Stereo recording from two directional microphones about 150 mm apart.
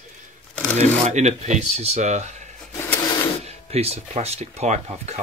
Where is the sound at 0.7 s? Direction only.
50° right (ahead or behind).